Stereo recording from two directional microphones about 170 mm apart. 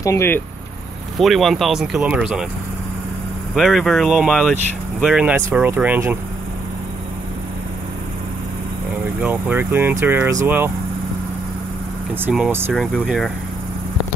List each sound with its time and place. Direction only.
0.0 s speech: 15° left (ahead or behind)
1.1 s speech: centre (ahead or behind)
3.5 s speech: centre (ahead or behind)
9.2 s speech: 10° right (ahead or behind)
12.3 s speech: 10° right (ahead or behind)
12.7 s speech: centre (ahead or behind)